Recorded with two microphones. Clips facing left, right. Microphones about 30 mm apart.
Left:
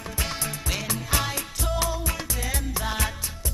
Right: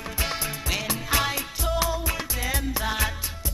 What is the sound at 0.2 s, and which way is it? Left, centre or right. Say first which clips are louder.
Music: right 1 dB; centre.